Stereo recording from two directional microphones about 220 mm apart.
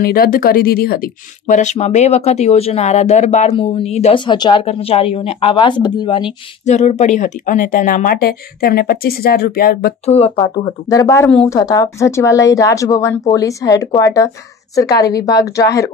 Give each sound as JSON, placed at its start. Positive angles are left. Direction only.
{"t": 0.0, "sound": "speech", "side_deg": 45}
{"t": 6.6, "sound": "speech", "side_deg": 30}
{"t": 10.0, "sound": "speech", "side_deg": 25}